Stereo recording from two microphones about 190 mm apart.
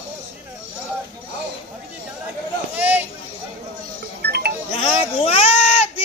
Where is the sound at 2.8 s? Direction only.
10° right (ahead or behind).